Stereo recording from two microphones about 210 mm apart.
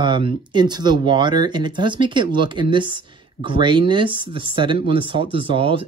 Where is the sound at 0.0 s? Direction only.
25° right (ahead or behind).